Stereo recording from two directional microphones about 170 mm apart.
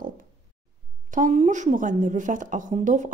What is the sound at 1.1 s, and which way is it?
A woman's voice, 45° right (ahead or behind).